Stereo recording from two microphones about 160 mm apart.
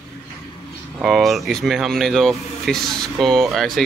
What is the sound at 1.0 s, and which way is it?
Speech, centre (ahead or behind).